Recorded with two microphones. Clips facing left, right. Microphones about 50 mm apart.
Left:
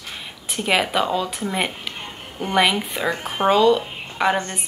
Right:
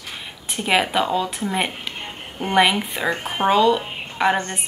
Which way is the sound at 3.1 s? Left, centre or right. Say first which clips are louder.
Right 1 dB; right.